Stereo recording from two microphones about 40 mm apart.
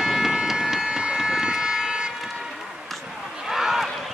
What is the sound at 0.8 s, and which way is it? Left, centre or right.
Vehicle, centre.